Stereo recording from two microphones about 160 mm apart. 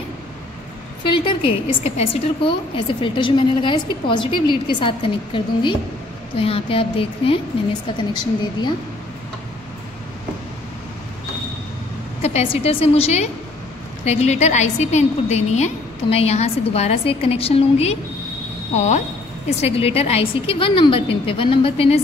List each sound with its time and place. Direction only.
1.0 s a woman's voice: 30° left (ahead or behind)
12.2 s a woman's voice: 40° left (ahead or behind)